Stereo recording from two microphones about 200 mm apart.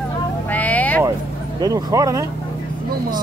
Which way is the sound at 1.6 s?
20° right (ahead or behind).